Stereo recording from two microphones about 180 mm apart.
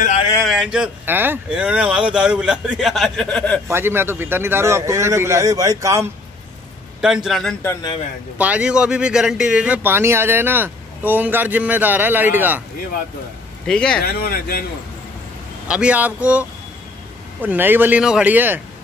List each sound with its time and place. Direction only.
0.4 s speech: centre (ahead or behind)
3.6 s speech: 15° right (ahead or behind)
7.0 s speech: 5° right (ahead or behind)
13.7 s speech: 5° left (ahead or behind)
14.0 s speech: 60° left (ahead or behind)
15.7 s speech: 5° right (ahead or behind)